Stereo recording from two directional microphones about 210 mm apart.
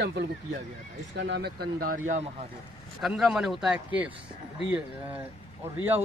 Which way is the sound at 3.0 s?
Centre (ahead or behind).